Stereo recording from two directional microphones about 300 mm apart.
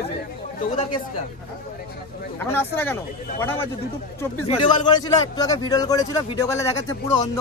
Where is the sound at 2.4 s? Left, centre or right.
Centre.